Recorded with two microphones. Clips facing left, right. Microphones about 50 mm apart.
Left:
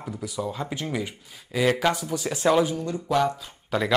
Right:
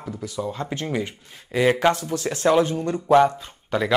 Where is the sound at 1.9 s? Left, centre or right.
Centre.